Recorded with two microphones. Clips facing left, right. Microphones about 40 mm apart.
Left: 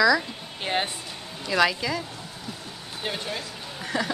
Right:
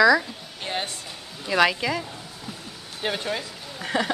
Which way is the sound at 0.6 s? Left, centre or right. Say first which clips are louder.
Left 3 dB; centre.